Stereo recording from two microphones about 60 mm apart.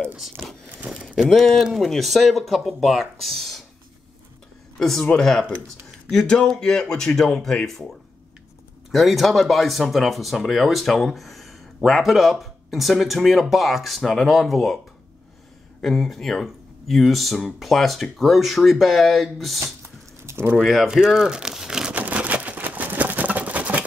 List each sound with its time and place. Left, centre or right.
1.4 s speech: centre
4.7 s speech: centre
8.9 s speech: centre
15.8 s speech: centre
19.6 s a sound: right
20.6 s speech: centre
20.9 s speech: centre
21.9 s a sound: right